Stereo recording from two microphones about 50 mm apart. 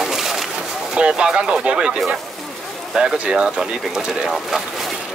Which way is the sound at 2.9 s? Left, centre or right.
Centre.